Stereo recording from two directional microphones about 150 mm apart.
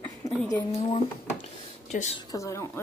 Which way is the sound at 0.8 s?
50° left (ahead or behind).